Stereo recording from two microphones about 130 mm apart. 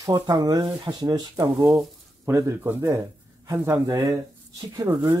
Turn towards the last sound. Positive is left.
turn(degrees=-25)  # may be behind; listen again after turning